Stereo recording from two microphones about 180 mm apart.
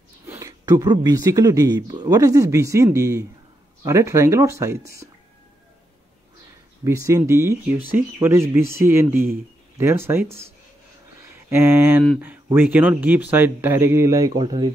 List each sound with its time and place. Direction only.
0.3 s speech: 15° right (ahead or behind)
6.8 s speech: 15° right (ahead or behind)